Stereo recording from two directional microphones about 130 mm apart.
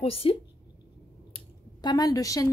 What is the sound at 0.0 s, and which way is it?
Speech, 45° left (ahead or behind).